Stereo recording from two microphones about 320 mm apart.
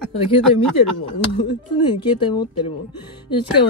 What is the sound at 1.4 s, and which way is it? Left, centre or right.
Speech, centre.